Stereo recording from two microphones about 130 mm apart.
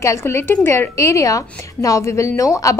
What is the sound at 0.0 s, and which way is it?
A woman's voice, 20° left (ahead or behind).